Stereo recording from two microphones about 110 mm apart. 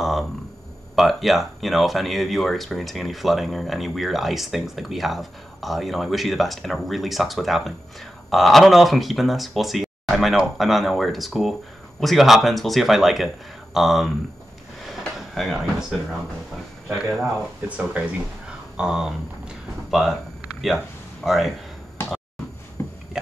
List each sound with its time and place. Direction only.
0.9 s speech: centre (ahead or behind)
15.1 s speech: centre (ahead or behind)
22.8 s a sound: 25° left (ahead or behind)